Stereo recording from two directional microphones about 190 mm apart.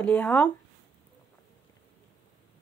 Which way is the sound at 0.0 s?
5° left (ahead or behind).